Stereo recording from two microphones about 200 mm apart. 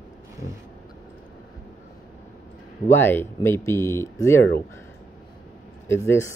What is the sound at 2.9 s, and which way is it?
Speech, 10° left (ahead or behind).